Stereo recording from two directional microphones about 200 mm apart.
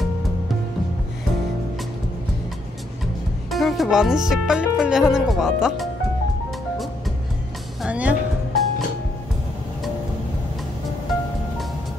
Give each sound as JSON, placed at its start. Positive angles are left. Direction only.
{"t": 3.4, "sound": "speech", "side_deg": 0}
{"t": 7.8, "sound": "music", "side_deg": -5}